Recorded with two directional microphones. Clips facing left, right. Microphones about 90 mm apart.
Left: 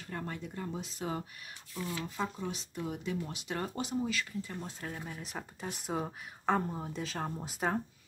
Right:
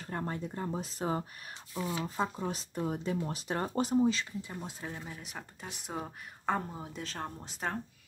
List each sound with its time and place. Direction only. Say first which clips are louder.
0.0 s speech: right 3 dB; 35° right (ahead or behind)
1.8 s speech: right 3 dB; 20° right (ahead or behind)
4.4 s speech: left 1 dB; 15° right (ahead or behind)
4.9 s speech: left 2 dB; centre (ahead or behind)